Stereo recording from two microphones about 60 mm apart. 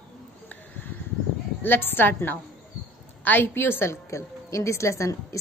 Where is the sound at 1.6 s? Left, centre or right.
Left.